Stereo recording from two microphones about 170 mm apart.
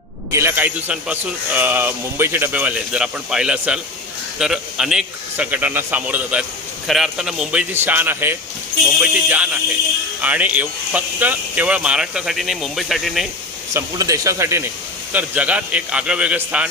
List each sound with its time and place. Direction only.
0.3 s speech: 15° right (ahead or behind)
13.7 s speech: 20° right (ahead or behind)